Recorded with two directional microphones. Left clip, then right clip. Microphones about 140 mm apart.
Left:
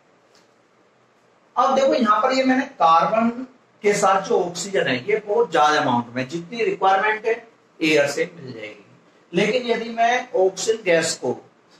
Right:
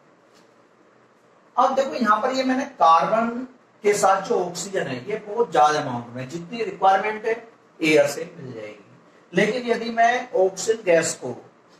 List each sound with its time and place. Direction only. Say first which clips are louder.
1.5 s a man's voice: left 3 dB; 20° left (ahead or behind)